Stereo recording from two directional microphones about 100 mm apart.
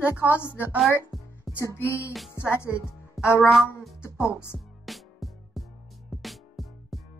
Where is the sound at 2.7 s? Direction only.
10° right (ahead or behind).